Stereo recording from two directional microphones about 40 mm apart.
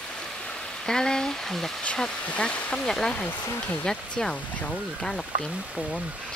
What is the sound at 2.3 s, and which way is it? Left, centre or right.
Speech, left.